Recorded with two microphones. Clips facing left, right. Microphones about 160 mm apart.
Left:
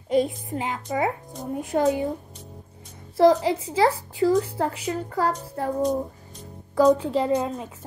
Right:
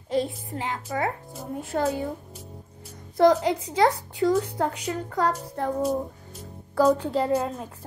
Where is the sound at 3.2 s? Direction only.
5° left (ahead or behind).